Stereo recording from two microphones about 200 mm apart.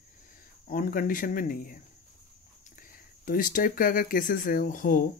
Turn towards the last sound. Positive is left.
turn(degrees=45)  # may be behind; listen again after turning